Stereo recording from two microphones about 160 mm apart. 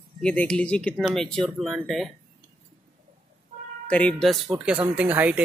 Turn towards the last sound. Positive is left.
turn(degrees=-10)  # may be behind; listen again after turning